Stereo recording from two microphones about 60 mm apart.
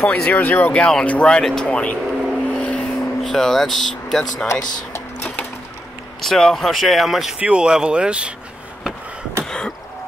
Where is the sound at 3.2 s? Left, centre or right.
Centre.